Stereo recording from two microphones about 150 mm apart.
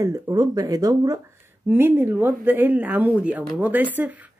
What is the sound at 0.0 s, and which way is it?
Speech, 25° right (ahead or behind).